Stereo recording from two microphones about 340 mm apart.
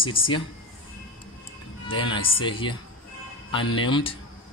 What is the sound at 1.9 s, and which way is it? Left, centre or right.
Speech, centre.